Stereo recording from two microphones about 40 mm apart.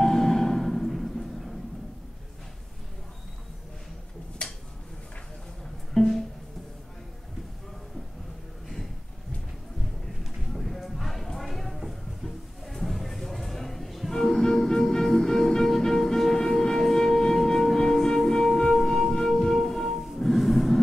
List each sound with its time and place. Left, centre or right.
0.0 s music: centre
4.4 s a sound: left
5.9 s music: centre
10.5 s music: centre
10.8 s a sound: centre
19.1 s music: centre